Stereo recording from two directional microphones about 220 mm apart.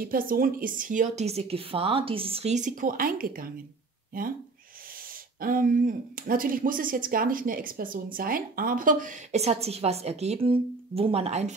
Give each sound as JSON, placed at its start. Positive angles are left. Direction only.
{"t": 0.0, "sound": "speech", "side_deg": -40}
{"t": 5.4, "sound": "speech", "side_deg": -40}